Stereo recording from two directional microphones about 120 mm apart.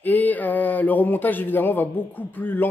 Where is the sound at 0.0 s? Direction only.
15° left (ahead or behind).